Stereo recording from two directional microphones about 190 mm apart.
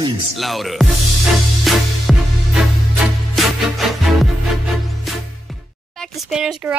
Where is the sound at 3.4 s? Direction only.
Centre (ahead or behind).